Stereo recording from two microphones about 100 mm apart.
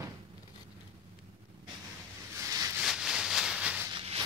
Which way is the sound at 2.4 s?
30° right (ahead or behind).